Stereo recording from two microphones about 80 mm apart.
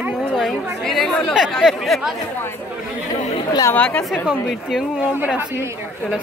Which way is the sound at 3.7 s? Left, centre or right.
Centre.